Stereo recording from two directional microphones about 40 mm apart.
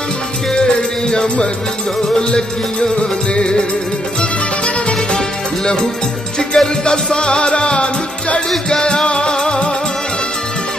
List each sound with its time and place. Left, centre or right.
1.1 s music: centre
6.5 s music: left
8.5 s music: centre